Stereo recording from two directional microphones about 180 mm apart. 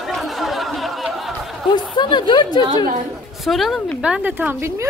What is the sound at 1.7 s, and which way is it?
Speech, 25° left (ahead or behind).